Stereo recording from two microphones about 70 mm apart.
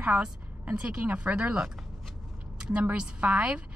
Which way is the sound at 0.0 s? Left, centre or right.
Centre.